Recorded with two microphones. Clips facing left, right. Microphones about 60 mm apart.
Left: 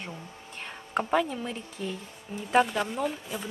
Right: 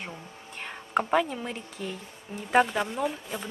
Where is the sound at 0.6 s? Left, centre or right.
Centre.